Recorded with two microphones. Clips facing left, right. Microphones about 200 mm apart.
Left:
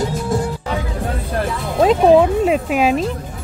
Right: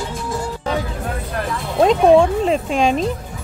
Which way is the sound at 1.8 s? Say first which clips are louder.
Even; 5° left (ahead or behind).